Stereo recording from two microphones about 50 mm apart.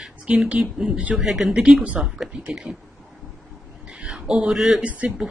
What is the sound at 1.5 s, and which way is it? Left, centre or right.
Speech, right.